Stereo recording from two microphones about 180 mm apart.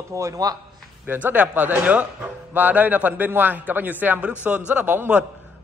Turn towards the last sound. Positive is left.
turn(degrees=-10)  # may be behind; listen again after turning